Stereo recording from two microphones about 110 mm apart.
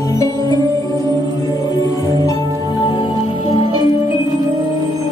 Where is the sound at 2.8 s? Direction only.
45° left (ahead or behind).